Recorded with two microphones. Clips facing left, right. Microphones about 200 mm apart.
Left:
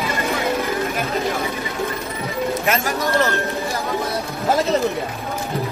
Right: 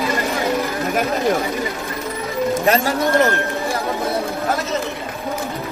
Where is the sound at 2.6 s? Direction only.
30° right (ahead or behind).